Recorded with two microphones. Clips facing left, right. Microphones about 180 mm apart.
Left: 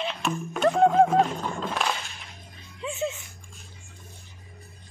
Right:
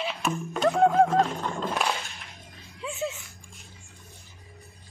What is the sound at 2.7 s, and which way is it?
Music, centre (ahead or behind).